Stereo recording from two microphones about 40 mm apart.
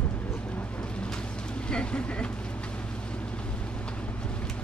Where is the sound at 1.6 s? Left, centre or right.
Left.